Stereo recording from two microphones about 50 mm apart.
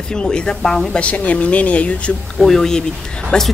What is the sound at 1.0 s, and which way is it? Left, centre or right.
A woman's voice, left.